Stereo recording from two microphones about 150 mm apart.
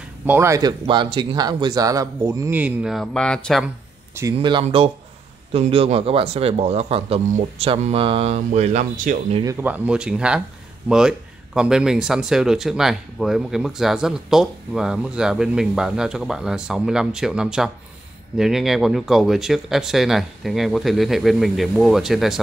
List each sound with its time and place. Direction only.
0.3 s speech: 20° right (ahead or behind)
2.6 s speech: 5° right (ahead or behind)
3.6 s a sound: 15° right (ahead or behind)
4.4 s speech: 30° right (ahead or behind); by 9.1 s 55° right (ahead or behind)
9.4 s speech: 20° right (ahead or behind)
9.7 s speech: 5° right (ahead or behind)